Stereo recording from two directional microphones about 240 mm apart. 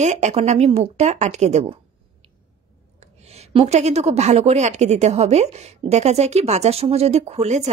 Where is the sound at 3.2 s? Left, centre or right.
Right.